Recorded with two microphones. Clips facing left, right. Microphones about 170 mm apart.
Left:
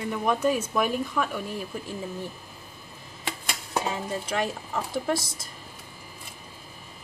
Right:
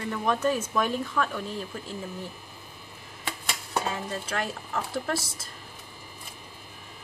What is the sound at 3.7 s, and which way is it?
Speech, 15° left (ahead or behind).